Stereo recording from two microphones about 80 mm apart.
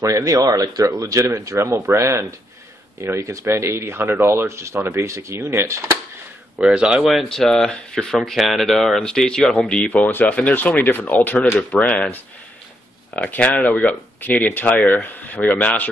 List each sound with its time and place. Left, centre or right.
0.0 s speech: right
1.6 s speech: right
6.6 s speech: centre
7.1 s speech: centre
10.1 s speech: left